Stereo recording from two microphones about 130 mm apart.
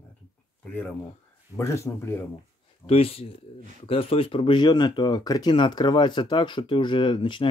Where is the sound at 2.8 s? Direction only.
45° left (ahead or behind).